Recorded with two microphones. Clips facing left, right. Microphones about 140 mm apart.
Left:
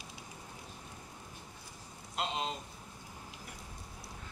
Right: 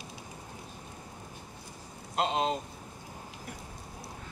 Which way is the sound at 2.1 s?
80° right.